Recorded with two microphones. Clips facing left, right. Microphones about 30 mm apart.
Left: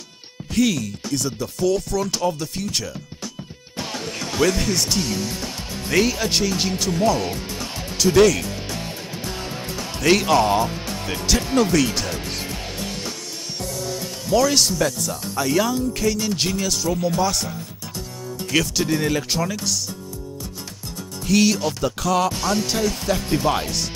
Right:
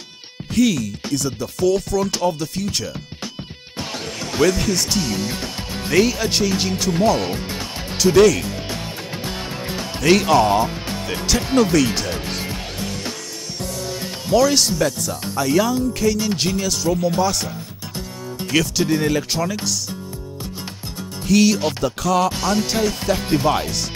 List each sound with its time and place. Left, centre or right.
0.5 s insect: centre
1.1 s speech: centre
4.4 s speech: centre
5.1 s music: right
5.9 s speech: centre
7.2 s music: right
8.0 s speech: centre
9.9 s speech: centre
14.3 s speech: centre
21.3 s speech: centre
21.5 s music: right
21.8 s speech: centre
22.7 s speech: centre